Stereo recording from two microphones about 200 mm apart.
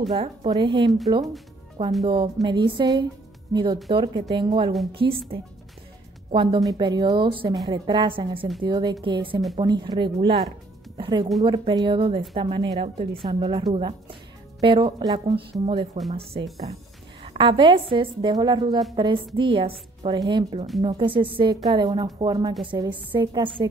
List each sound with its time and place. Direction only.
0.1 s a woman's voice: 25° right (ahead or behind)
2.0 s a woman's voice: 25° right (ahead or behind)
6.3 s a woman's voice: 25° right (ahead or behind)